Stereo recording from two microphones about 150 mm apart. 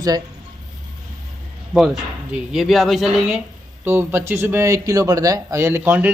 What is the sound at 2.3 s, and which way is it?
Speech, 5° right (ahead or behind).